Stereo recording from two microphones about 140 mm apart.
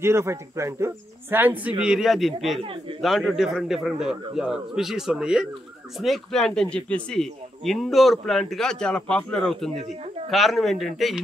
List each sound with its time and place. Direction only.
0.0 s speech: 20° right (ahead or behind); by 2.6 s centre (ahead or behind)
2.6 s speech: 40° right (ahead or behind)
3.0 s speech: centre (ahead or behind)
9.8 s speech: 50° right (ahead or behind)
10.3 s speech: centre (ahead or behind)